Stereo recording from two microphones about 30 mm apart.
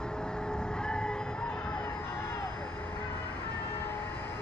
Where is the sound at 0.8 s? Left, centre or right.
Left.